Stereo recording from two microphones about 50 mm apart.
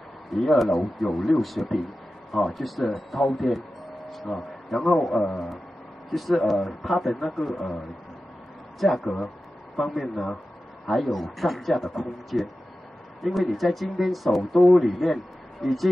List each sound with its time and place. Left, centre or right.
0.3 s speech: centre
4.1 s a sound: centre
4.7 s a man's voice: centre
8.7 s speech: centre